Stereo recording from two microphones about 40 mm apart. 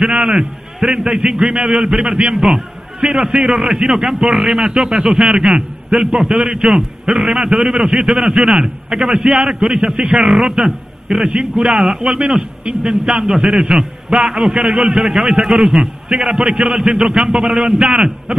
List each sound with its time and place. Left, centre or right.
0.0 s a man's voice: centre
2.4 s a sound: centre
3.1 s a man's voice: centre
12.6 s a man's voice: right